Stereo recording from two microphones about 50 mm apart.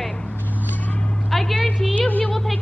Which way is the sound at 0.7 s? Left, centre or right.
Left.